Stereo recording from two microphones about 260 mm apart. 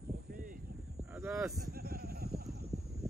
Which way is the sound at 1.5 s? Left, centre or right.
Right.